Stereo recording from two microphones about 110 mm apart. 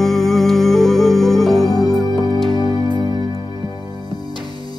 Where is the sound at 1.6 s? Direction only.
35° left (ahead or behind).